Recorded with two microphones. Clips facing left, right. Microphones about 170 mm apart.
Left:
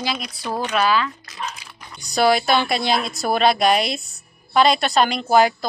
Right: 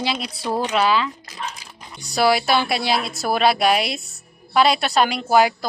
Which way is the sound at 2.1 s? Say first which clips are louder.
Left 1 dB; 5° right (ahead or behind).